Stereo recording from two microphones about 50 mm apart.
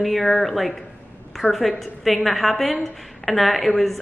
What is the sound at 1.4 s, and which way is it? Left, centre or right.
Speech, left.